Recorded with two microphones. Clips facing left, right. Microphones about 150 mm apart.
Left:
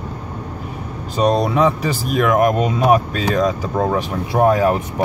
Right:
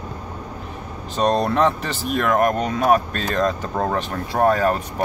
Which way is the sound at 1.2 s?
5° left (ahead or behind).